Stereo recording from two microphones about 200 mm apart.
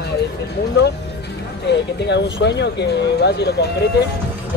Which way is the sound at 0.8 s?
55° left (ahead or behind).